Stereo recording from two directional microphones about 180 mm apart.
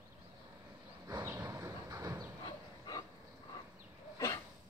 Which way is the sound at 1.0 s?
15° right (ahead or behind).